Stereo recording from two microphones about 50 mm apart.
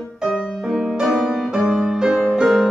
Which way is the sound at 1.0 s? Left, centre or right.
Centre.